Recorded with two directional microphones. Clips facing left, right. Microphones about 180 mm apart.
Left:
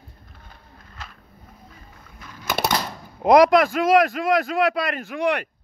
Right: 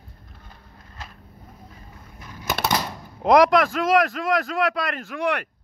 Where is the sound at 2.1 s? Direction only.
20° right (ahead or behind).